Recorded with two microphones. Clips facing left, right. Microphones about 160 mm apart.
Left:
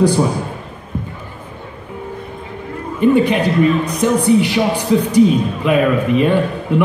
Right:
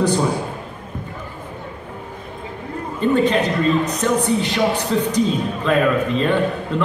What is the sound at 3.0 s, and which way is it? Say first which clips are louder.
A man's voice: left 4 dB; 15° left (ahead or behind).